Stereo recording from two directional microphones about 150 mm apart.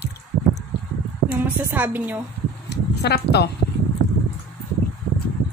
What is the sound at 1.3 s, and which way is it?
Speech, 10° right (ahead or behind).